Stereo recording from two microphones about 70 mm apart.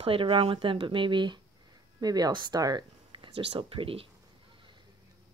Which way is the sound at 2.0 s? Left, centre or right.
Right.